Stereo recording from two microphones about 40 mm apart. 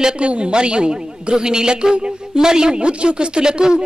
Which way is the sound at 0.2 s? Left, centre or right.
Right.